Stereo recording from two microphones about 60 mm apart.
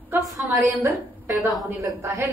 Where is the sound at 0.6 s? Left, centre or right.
Right.